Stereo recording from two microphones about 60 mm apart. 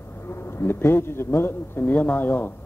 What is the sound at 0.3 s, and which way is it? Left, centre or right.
Speech, left.